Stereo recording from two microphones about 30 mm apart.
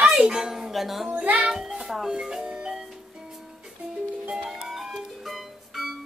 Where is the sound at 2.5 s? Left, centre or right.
Centre.